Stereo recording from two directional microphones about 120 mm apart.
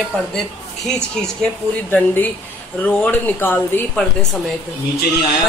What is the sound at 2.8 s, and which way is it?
Speech, 15° left (ahead or behind).